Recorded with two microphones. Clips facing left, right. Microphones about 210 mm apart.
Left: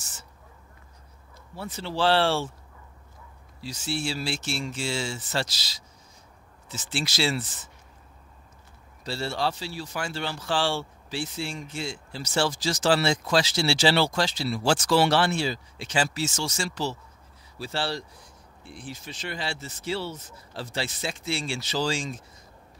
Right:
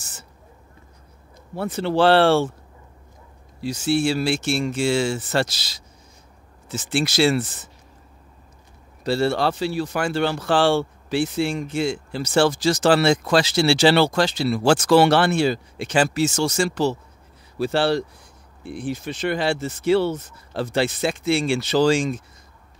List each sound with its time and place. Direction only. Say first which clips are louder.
1.5 s speech: right 11 dB; 60° right (ahead or behind)
3.6 s speech: right 10 dB; 60° right (ahead or behind)
6.9 s speech: right 9 dB; 55° right (ahead or behind)
9.0 s speech: right 9 dB; 60° right (ahead or behind)